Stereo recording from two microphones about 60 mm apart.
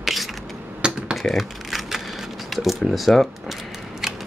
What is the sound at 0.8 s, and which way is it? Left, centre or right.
Computer keyboard, centre.